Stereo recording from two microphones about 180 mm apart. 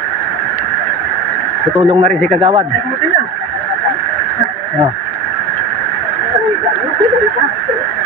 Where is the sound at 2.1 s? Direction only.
5° left (ahead or behind).